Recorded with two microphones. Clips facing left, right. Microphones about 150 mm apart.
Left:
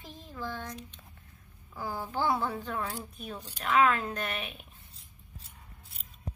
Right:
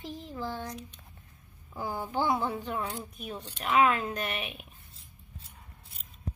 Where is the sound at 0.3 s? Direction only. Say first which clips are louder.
Right 1 dB; 30° right (ahead or behind).